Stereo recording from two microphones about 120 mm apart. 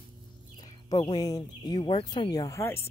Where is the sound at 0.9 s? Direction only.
35° left (ahead or behind).